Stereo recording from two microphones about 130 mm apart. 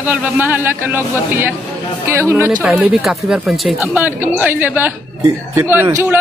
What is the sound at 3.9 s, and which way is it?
A man's voice, 15° right (ahead or behind).